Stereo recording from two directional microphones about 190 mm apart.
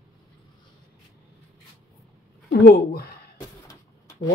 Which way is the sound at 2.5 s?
55° left (ahead or behind).